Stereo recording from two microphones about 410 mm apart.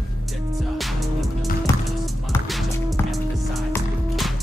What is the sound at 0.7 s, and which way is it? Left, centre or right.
Music, centre.